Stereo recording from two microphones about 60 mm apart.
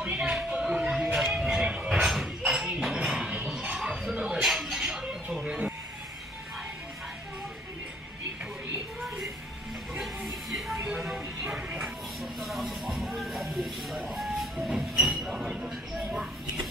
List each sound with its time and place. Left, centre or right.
0.0 s music: right
1.9 s a sound: centre
2.8 s chink: centre
3.7 s music: centre
9.9 s music: centre
12.2 s a sound: centre
14.1 s vehicle: centre
15.2 s train: centre